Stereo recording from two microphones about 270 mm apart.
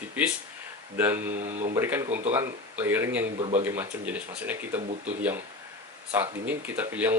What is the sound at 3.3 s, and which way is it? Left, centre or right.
Speech, centre.